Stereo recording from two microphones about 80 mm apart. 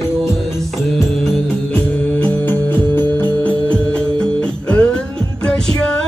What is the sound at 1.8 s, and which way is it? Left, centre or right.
Music, left.